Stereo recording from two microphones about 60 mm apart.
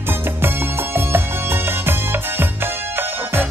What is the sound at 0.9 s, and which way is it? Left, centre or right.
Music, right.